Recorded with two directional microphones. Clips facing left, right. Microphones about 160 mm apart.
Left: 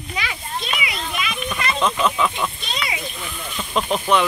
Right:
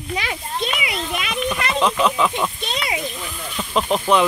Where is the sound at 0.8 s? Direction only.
60° right (ahead or behind).